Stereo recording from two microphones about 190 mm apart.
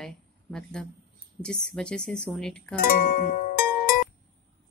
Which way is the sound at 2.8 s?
50° left (ahead or behind).